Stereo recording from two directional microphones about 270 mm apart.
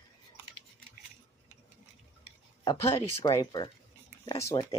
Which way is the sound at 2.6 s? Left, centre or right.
Centre.